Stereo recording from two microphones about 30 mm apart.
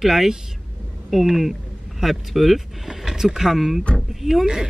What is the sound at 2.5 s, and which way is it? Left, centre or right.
Speech, centre.